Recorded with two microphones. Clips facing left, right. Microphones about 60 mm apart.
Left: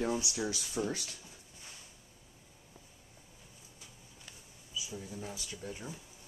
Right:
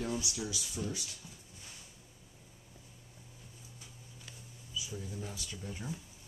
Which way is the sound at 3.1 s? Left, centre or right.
Centre.